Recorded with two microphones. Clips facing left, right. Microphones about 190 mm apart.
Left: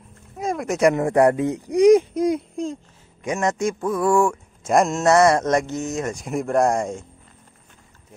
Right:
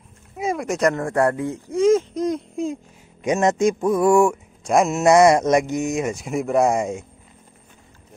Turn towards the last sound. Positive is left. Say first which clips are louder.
# right 1 dB
turn(degrees=-5)  # may be behind; listen again after turning